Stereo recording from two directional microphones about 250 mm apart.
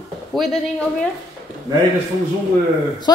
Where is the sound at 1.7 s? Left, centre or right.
Centre.